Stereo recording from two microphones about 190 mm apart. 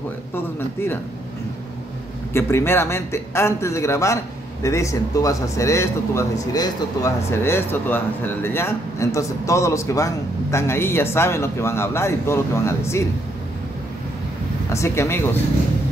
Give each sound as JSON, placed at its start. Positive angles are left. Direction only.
{"t": 2.3, "sound": "speech", "side_deg": 15}
{"t": 14.7, "sound": "speech", "side_deg": 15}